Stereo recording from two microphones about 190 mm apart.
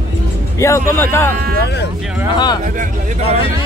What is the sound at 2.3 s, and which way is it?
Speech, 20° left (ahead or behind).